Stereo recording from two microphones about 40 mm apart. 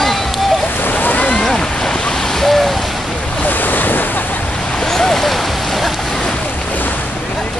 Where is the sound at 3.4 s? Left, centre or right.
Left.